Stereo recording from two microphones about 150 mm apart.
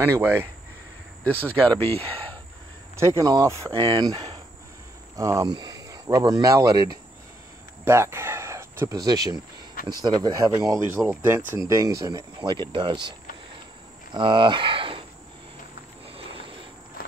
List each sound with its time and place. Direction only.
0.0 s speech: 15° right (ahead or behind)
1.2 s speech: 10° left (ahead or behind)
3.0 s speech: 20° right (ahead or behind)
3.7 s speech: 30° right (ahead or behind)
14.1 s speech: 30° right (ahead or behind)
16.1 s cricket: 40° right (ahead or behind)